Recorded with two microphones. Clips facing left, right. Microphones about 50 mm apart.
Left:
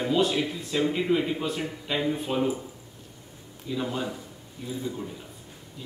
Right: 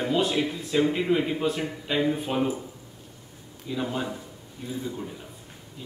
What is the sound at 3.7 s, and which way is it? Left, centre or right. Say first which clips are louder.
Speech: right 1 dB; centre.